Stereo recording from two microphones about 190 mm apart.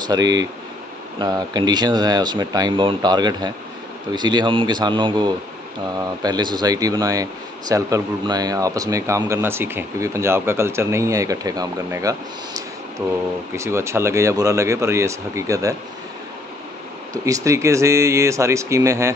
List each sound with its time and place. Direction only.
0.0 s speech: 20° right (ahead or behind)
17.1 s speech: 15° right (ahead or behind)